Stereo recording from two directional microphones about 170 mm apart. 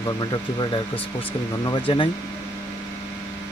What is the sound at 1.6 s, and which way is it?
Speech, 30° left (ahead or behind).